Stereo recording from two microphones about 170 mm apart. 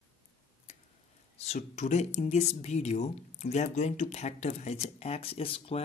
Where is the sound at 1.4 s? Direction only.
40° left (ahead or behind).